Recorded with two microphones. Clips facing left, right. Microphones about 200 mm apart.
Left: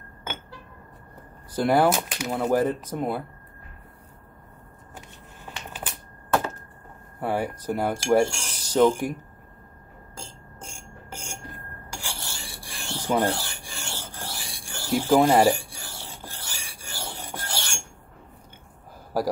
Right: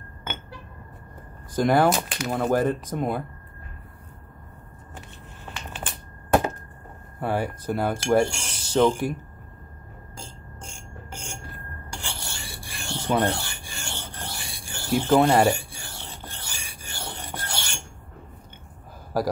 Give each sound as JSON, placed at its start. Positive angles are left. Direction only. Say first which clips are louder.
{"t": 1.5, "sound": "speech", "louder": "right 1 dB", "side_deg": 10}
{"t": 4.9, "sound": "shuffling cards", "louder": "right 1 dB", "side_deg": 10}
{"t": 7.2, "sound": "speech", "louder": "even", "side_deg": 10}
{"t": 8.2, "sound": "a sound", "louder": "even", "side_deg": 0}
{"t": 11.1, "sound": "a sound", "louder": "left 1 dB", "side_deg": 10}
{"t": 13.0, "sound": "filing", "louder": "even", "side_deg": 5}